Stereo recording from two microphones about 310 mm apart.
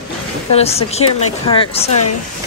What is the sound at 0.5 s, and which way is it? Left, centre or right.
Speech, centre.